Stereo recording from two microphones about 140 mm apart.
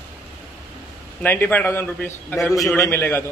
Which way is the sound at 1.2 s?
15° left (ahead or behind).